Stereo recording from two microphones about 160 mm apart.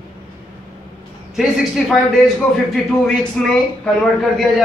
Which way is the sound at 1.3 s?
Centre (ahead or behind).